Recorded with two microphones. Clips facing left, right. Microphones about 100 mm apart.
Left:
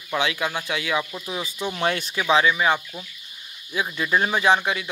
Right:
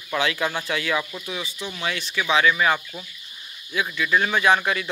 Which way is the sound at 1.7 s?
45° left (ahead or behind).